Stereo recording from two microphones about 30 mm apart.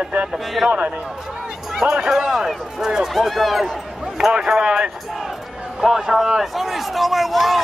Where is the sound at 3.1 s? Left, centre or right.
Centre.